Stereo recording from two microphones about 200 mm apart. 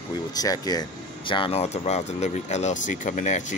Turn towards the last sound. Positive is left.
turn(degrees=35)  # may be behind; listen again after turning